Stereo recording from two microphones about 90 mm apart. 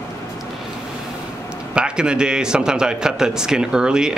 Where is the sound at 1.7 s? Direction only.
10° right (ahead or behind).